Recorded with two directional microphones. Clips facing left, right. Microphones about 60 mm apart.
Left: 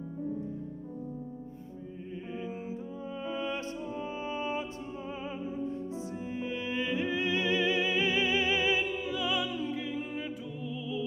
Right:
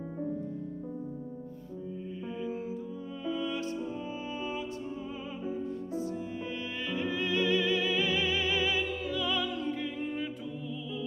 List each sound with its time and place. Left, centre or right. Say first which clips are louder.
3.3 s music: right 3 dB; left
5.7 s music: right 2 dB; centre